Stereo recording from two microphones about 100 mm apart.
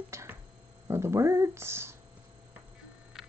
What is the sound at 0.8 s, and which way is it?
Speech, 25° right (ahead or behind).